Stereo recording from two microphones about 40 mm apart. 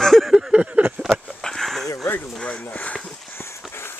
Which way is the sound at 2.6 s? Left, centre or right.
Left.